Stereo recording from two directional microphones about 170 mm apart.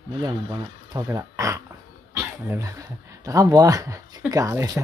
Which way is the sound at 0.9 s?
15° right (ahead or behind).